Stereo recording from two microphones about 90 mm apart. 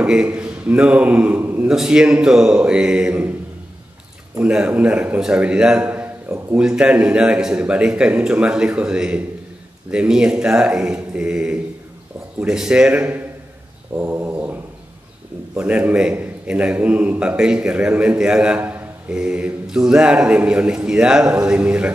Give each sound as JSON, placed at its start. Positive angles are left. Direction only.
{"t": 0.0, "sound": "a man's voice", "side_deg": -10}
{"t": 1.7, "sound": "a man's voice", "side_deg": -10}
{"t": 4.4, "sound": "a man's voice", "side_deg": -15}
{"t": 13.9, "sound": "dog", "side_deg": -20}
{"t": 15.5, "sound": "a man's voice", "side_deg": -15}